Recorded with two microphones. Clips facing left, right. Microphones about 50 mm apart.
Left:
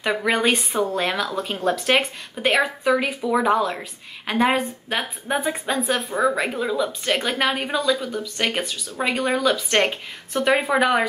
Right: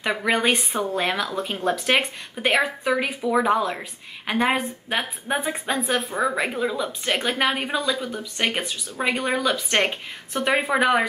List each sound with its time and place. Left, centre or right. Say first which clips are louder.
0.0 s a woman's voice: left 1 dB; centre